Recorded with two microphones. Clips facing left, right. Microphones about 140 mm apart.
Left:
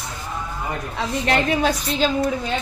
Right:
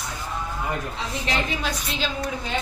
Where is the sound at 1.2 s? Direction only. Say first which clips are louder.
Left 8 dB; 55° left (ahead or behind).